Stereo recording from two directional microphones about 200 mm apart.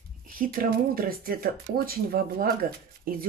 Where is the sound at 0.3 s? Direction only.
45° right (ahead or behind).